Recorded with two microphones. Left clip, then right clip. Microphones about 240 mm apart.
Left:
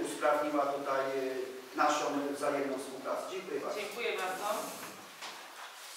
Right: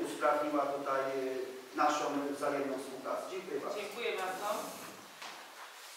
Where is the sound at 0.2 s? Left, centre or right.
Centre.